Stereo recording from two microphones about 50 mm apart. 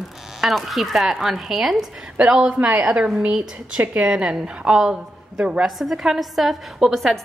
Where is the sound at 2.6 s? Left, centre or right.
Right.